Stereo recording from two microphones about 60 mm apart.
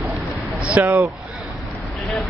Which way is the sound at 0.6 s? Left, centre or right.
Right.